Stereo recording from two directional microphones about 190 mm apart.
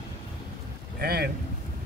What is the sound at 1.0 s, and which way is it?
Speech, 55° right (ahead or behind).